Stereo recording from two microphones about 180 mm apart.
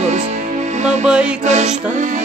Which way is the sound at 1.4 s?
40° right (ahead or behind).